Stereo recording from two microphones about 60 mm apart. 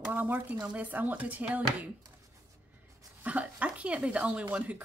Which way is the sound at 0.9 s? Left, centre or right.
Right.